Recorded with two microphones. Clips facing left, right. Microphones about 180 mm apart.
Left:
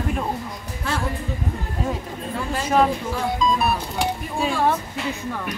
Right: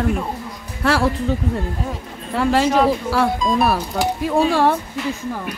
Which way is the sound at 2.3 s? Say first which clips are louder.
Right 5 dB; 85° right.